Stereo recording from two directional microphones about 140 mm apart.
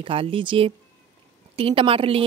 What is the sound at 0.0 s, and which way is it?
Speech, 40° right (ahead or behind).